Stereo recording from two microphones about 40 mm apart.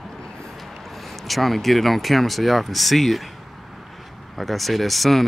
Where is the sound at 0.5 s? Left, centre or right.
Centre.